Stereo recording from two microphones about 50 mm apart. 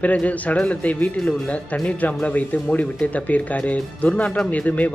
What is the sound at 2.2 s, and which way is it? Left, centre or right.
Speech, left.